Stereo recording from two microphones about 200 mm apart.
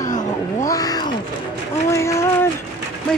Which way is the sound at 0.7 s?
20° left (ahead or behind).